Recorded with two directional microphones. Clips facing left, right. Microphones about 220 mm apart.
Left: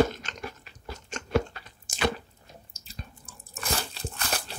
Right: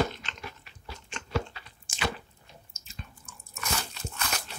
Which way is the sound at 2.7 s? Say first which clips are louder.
Left 1 dB; 35° left (ahead or behind).